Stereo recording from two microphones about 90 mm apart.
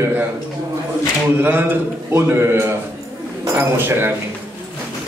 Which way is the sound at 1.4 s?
20° right (ahead or behind).